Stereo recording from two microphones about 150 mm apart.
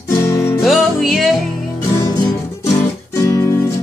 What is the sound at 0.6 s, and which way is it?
Music, centre (ahead or behind).